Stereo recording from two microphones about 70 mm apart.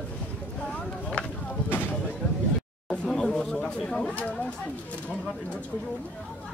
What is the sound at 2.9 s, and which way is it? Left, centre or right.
Speech, centre.